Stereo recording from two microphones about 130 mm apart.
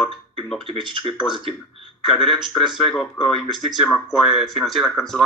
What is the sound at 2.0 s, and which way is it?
Speech, centre (ahead or behind).